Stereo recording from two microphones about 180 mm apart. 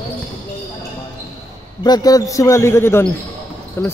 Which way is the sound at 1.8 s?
20° left (ahead or behind).